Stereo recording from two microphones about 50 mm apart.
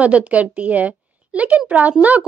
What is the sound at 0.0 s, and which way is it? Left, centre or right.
A woman's voice, right.